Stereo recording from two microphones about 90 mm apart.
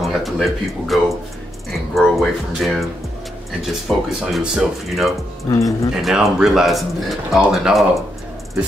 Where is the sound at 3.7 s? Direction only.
5° right (ahead or behind).